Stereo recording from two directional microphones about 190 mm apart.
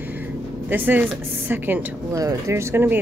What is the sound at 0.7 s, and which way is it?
Speech, 10° right (ahead or behind).